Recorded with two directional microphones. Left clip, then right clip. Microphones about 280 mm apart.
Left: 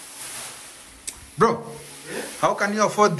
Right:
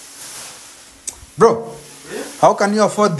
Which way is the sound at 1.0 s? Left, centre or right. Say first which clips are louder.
Right 7 dB; centre.